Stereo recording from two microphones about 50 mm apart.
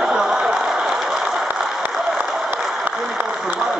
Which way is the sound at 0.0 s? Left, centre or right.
Centre.